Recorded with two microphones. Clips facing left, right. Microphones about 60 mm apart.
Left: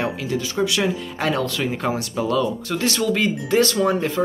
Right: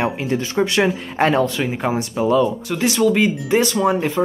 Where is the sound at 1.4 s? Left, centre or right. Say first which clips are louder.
Right 4 dB; right.